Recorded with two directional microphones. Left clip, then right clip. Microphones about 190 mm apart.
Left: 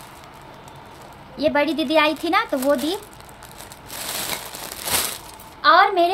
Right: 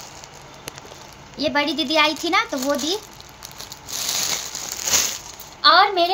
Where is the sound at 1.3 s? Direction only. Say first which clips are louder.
Left 1 dB; 10° left (ahead or behind).